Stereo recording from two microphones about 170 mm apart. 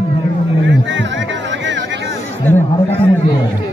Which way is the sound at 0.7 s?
90° right.